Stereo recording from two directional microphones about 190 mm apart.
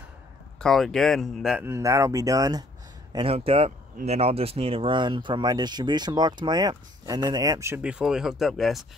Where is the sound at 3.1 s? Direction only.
30° right (ahead or behind); by 8.8 s centre (ahead or behind).